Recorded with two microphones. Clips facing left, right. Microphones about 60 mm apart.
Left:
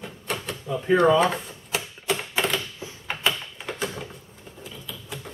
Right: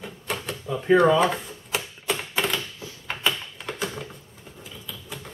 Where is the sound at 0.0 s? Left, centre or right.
Centre.